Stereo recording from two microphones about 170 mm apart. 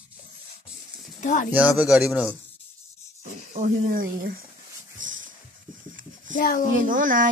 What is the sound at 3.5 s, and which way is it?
Speech, 50° right (ahead or behind).